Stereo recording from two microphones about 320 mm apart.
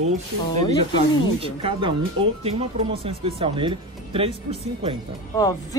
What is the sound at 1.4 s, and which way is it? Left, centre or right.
Speech, centre.